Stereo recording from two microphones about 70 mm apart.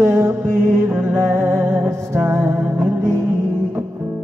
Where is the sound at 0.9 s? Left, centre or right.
Right.